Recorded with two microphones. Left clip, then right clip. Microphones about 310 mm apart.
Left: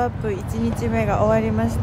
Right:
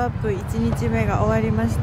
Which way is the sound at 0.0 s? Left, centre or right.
Centre.